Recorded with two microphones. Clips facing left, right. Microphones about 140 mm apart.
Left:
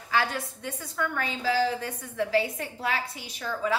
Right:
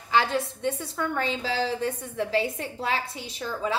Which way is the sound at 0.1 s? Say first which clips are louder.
Right 4 dB; 25° right (ahead or behind).